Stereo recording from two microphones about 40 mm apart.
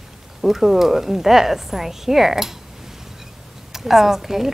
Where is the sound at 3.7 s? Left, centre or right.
Centre.